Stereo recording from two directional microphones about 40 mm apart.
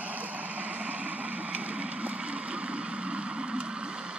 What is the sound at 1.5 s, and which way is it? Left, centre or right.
Vehicle, right.